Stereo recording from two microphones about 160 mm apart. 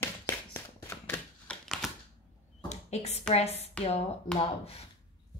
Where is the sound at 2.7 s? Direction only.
45° left (ahead or behind).